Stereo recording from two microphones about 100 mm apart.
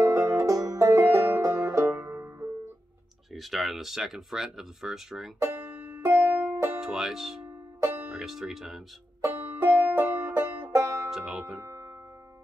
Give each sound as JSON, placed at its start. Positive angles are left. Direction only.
{"t": 0.0, "sound": "music", "side_deg": -30}
{"t": 3.3, "sound": "speech", "side_deg": 0}
{"t": 5.6, "sound": "music", "side_deg": -20}
{"t": 6.8, "sound": "speech", "side_deg": -5}
{"t": 7.8, "sound": "music", "side_deg": -20}
{"t": 8.1, "sound": "speech", "side_deg": -5}
{"t": 9.2, "sound": "music", "side_deg": -20}
{"t": 11.1, "sound": "music", "side_deg": -5}
{"t": 11.6, "sound": "music", "side_deg": -35}